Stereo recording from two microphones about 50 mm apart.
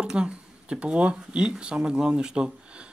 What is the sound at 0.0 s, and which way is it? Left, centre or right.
Speech, centre.